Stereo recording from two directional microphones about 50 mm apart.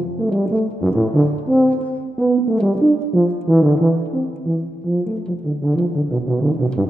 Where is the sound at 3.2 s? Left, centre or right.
Centre.